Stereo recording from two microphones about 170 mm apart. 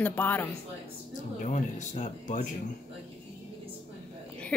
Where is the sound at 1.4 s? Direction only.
45° left (ahead or behind).